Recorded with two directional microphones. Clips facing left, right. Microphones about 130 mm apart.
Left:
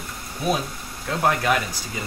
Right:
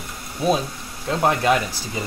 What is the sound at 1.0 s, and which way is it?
Speech, 25° right (ahead or behind).